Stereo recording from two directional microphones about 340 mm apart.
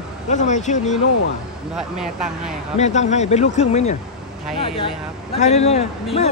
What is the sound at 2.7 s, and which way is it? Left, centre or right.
A man's voice, centre.